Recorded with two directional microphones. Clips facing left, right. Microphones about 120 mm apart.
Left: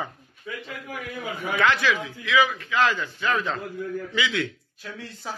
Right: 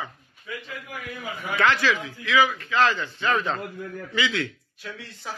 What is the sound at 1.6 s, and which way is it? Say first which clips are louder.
A man's voice: right 1 dB; 15° left (ahead or behind).